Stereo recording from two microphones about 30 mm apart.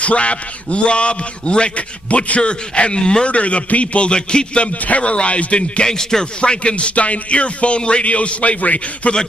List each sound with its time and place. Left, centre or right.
0.0 s a man's voice: left
2.0 s a man's voice: left
3.0 s speech: left
3.3 s speech: left
4.8 s speech: left
5.9 s speech: centre
6.4 s speech: left